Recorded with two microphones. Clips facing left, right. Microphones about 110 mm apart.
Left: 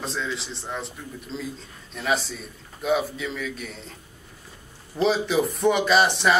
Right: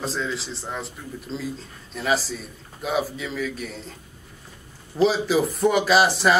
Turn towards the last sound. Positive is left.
turn(degrees=0)  # may be behind; listen again after turning